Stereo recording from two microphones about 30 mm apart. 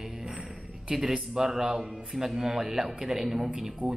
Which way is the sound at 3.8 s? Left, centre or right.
Right.